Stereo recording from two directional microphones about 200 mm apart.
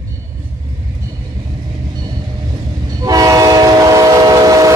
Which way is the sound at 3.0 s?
20° right (ahead or behind).